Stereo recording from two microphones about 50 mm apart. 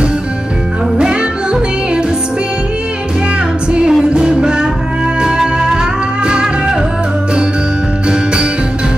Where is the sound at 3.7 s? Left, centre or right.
Centre.